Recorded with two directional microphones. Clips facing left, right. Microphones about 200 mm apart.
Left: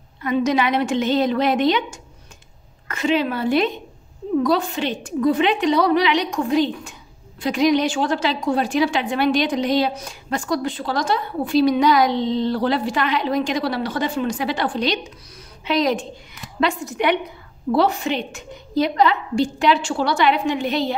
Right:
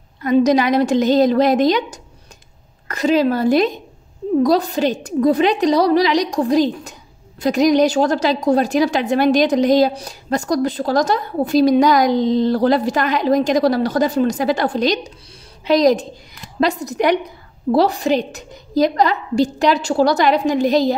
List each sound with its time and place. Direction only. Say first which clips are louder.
0.2 s a woman's voice: right 5 dB; 40° right (ahead or behind)